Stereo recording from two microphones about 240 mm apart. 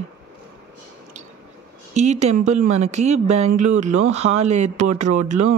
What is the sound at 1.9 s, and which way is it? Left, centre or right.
Speech, right.